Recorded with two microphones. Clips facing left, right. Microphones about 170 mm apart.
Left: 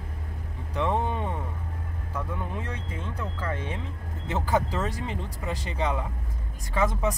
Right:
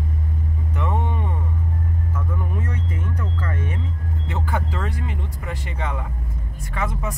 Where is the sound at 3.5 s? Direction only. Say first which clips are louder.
Right 5 dB; 25° left (ahead or behind).